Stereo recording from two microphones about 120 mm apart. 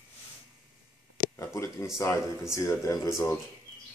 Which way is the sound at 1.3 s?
25° left (ahead or behind).